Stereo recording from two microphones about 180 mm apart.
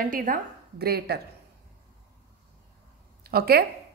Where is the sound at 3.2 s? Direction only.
60° right (ahead or behind).